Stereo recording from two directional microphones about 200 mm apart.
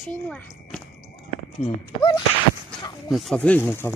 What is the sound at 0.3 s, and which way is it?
Speech, 5° left (ahead or behind).